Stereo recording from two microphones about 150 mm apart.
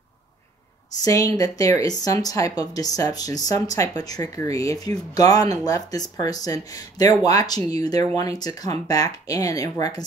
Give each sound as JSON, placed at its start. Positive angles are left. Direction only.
{"t": 1.0, "sound": "speech", "side_deg": 25}